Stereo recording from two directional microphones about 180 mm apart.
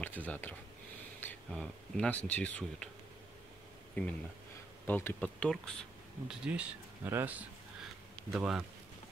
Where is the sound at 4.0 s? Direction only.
10° left (ahead or behind).